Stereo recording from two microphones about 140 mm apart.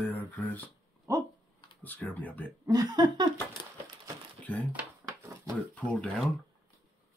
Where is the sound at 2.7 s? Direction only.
25° right (ahead or behind).